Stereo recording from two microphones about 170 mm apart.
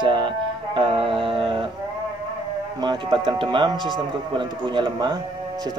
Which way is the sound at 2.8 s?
30° right (ahead or behind).